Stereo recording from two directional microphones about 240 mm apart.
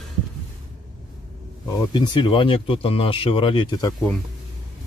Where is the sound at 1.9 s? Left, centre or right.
Centre.